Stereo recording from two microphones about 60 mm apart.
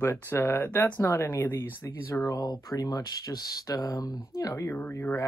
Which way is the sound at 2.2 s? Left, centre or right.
Left.